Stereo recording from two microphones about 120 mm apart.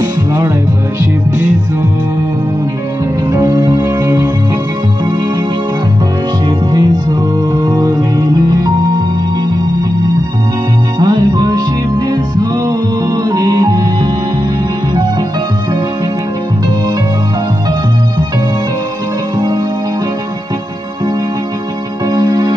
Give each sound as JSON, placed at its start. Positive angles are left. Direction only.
{"t": 0.0, "sound": "music", "side_deg": -30}
{"t": 3.3, "sound": "music", "side_deg": -30}
{"t": 6.7, "sound": "music", "side_deg": -30}
{"t": 11.0, "sound": "music", "side_deg": -35}
{"t": 12.6, "sound": "music", "side_deg": -30}
{"t": 19.3, "sound": "music", "side_deg": -35}
{"t": 22.1, "sound": "music", "side_deg": -30}